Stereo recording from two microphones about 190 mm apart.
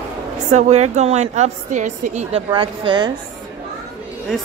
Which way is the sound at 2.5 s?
25° right (ahead or behind).